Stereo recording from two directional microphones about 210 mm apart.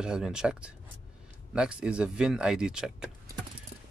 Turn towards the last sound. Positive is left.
turn(degrees=-5)  # may be behind; listen again after turning